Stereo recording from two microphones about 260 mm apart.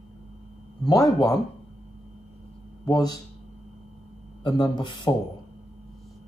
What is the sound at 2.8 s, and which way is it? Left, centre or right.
Speech, centre.